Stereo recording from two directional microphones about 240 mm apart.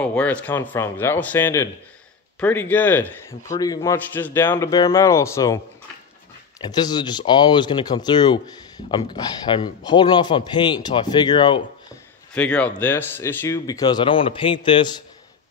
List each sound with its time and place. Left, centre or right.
0.0 s speech: centre
6.6 s speech: centre
12.4 s speech: centre